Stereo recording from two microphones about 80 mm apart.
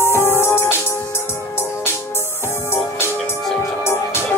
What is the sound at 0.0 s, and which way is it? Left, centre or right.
Music, left.